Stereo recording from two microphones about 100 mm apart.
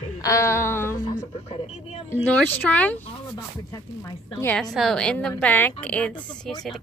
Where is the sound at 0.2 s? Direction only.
30° left (ahead or behind).